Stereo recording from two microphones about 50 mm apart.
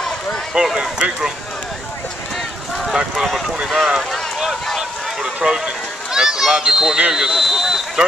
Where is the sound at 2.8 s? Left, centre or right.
Centre.